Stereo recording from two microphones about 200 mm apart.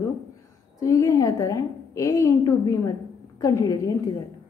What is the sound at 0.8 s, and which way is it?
A woman's voice, 15° left (ahead or behind).